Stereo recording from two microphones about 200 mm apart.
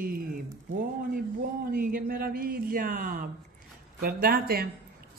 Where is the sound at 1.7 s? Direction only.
45° right (ahead or behind).